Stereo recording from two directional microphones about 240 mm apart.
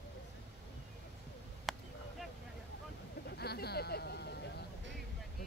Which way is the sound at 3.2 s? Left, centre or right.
Left.